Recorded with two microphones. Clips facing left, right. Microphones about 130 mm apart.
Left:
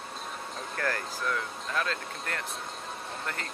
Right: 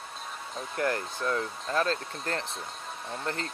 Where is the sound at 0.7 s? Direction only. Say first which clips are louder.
Right 3 dB; 20° right (ahead or behind).